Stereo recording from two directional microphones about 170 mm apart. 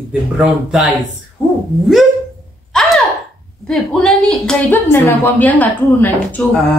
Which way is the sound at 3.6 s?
5° left (ahead or behind).